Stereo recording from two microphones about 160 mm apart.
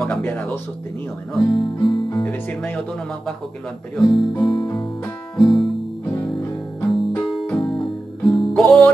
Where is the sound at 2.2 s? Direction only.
10° left (ahead or behind).